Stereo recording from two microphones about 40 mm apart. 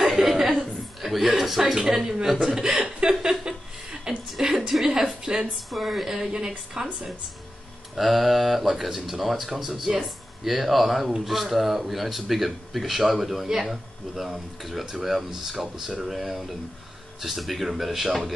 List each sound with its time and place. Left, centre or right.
0.0 s chuckle: centre
1.0 s speech: centre
2.4 s chuckle: centre
4.1 s a sound: centre
5.2 s a sound: right
5.7 s speech: centre
7.9 s speech: centre
9.7 s speech: right
10.4 s speech: centre